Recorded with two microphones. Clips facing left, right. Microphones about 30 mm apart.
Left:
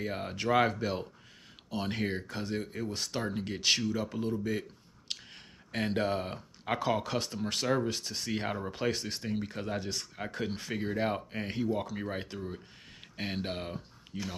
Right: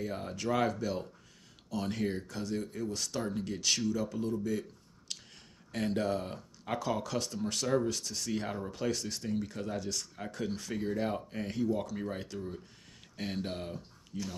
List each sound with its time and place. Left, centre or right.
0.0 s speech: left